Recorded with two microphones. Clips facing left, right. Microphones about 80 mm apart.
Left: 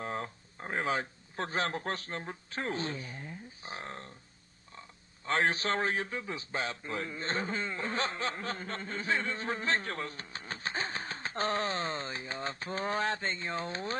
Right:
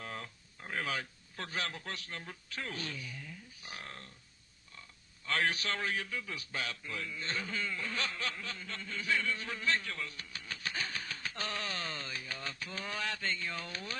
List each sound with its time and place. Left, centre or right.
0.0 s a man's voice: left